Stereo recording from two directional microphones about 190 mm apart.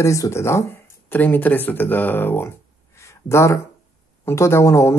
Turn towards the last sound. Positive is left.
turn(degrees=15)  # may be behind; listen again after turning